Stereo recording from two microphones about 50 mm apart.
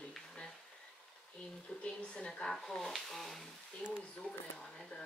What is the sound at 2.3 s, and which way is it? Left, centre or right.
Speech, centre.